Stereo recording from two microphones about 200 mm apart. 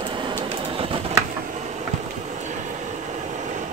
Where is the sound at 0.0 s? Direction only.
25° right (ahead or behind).